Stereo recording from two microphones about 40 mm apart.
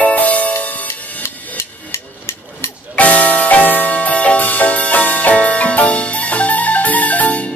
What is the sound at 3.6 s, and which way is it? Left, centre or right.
Music, left.